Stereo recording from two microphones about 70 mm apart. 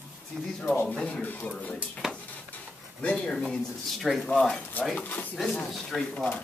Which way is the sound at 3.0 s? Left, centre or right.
Centre.